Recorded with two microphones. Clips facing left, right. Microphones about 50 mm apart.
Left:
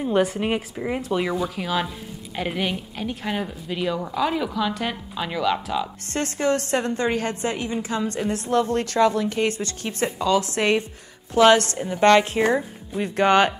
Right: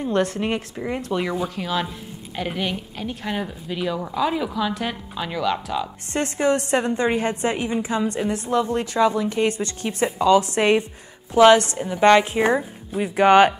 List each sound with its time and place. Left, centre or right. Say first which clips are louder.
0.0 s a woman's voice: left 1 dB; centre
6.0 s a woman's voice: right 3 dB; right
10.0 s speech: right 4 dB; centre
10.4 s a woman's voice: right 3 dB; right